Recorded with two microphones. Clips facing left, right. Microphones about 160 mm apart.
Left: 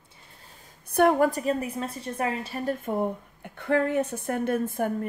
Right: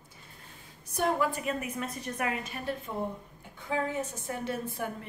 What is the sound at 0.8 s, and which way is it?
A woman's voice, 60° left (ahead or behind).